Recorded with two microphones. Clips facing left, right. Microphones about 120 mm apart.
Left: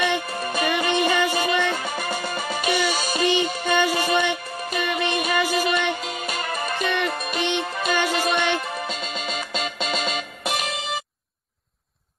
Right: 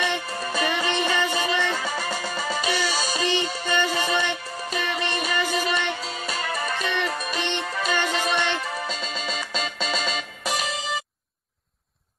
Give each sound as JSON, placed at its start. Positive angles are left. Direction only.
{"t": 0.0, "sound": "music", "side_deg": 15}
{"t": 2.0, "sound": "music", "side_deg": 45}
{"t": 2.3, "sound": "music", "side_deg": 10}
{"t": 8.9, "sound": "music", "side_deg": -35}
{"t": 9.2, "sound": "music", "side_deg": 10}